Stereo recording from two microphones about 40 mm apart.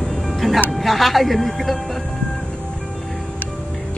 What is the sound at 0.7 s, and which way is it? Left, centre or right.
Speech, centre.